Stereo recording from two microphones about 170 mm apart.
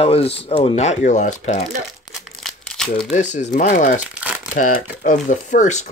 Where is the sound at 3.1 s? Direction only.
45° left (ahead or behind).